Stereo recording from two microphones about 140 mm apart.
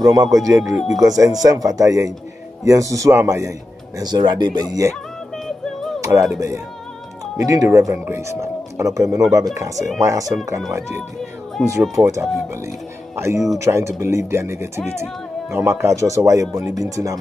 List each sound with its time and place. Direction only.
0.0 s speech: 25° right (ahead or behind)
4.0 s speech: 30° right (ahead or behind)
5.9 s a sound: 20° right (ahead or behind)
7.3 s speech: 20° right (ahead or behind)
11.6 s speech: 5° left (ahead or behind)
12.0 s speech: 20° right (ahead or behind)